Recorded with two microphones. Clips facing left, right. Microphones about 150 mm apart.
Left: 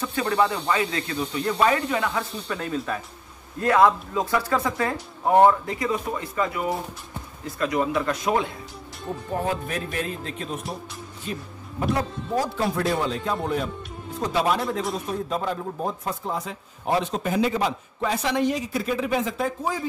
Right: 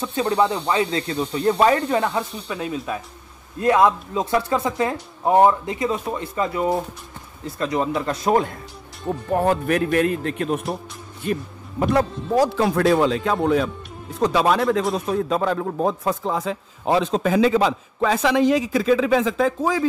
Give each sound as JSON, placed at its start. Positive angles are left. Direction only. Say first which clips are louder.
{"t": 0.0, "sound": "speech", "louder": "right 3 dB", "side_deg": -25}
{"t": 2.4, "sound": "speech", "louder": "right 1 dB", "side_deg": -5}
{"t": 3.6, "sound": "speech", "louder": "right 2 dB", "side_deg": -20}
{"t": 9.3, "sound": "a man's voice", "louder": "right 8 dB", "side_deg": -65}
{"t": 11.9, "sound": "a man's voice", "louder": "right 6 dB", "side_deg": -85}